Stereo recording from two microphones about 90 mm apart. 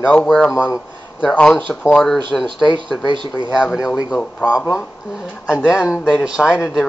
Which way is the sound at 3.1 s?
60° right (ahead or behind).